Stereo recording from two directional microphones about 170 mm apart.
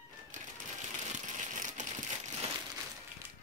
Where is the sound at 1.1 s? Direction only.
45° right (ahead or behind).